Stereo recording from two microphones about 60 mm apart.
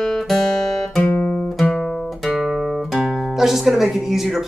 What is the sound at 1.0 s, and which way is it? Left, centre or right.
Music, left.